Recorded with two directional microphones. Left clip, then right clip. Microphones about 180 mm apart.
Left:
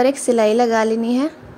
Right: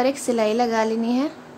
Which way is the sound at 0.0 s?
30° left (ahead or behind).